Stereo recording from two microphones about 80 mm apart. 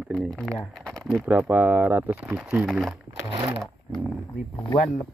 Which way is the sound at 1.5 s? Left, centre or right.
Right.